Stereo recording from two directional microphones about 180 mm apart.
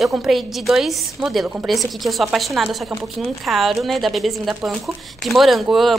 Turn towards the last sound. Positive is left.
turn(degrees=0)  # may be behind; listen again after turning